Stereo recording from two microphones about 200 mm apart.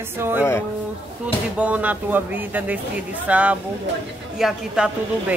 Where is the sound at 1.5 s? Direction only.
5° right (ahead or behind).